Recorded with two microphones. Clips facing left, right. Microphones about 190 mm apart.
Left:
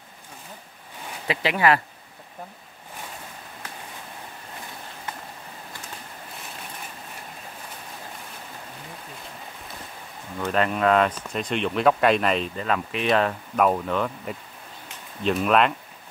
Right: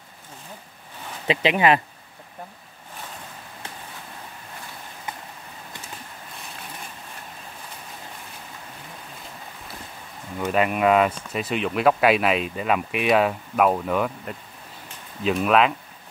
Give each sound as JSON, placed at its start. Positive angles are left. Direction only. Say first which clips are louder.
{"t": 1.2, "sound": "speech", "louder": "right 2 dB", "side_deg": -20}
{"t": 10.5, "sound": "speech", "louder": "right 2 dB", "side_deg": -10}